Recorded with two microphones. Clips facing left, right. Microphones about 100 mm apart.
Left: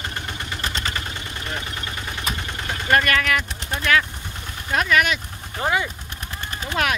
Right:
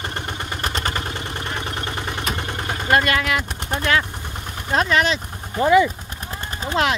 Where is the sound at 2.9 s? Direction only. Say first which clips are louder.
Right 1 dB; 20° right (ahead or behind).